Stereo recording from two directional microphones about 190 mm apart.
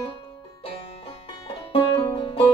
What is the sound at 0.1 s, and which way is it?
Music, 30° left (ahead or behind).